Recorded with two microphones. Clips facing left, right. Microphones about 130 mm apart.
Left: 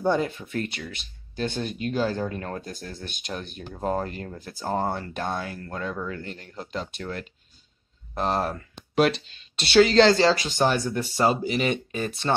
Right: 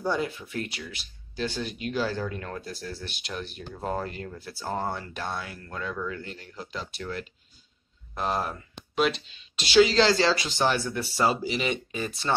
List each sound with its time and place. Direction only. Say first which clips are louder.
0.1 s speech: left 4 dB; 50° left (ahead or behind); by 6.0 s 25° left (ahead or behind)
6.0 s speech: left 1 dB; 45° left (ahead or behind)
8.1 s speech: left 3 dB; 30° left (ahead or behind)
9.7 s speech: left 3 dB; 55° left (ahead or behind)